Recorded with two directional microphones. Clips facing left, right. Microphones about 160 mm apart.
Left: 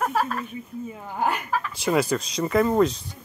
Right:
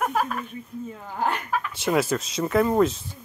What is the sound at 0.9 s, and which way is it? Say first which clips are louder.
Speech: left 1 dB; 5° left (ahead or behind).